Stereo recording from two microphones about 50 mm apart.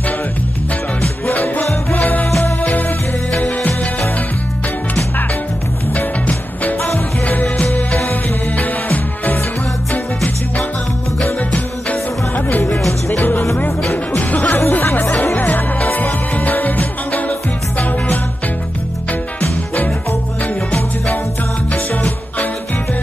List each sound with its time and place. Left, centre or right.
1.3 s music: left
1.6 s music: left
2.0 s music: left
5.9 s music: left
11.5 s music: left
14.7 s music: left
15.5 s music: left
21.7 s music: left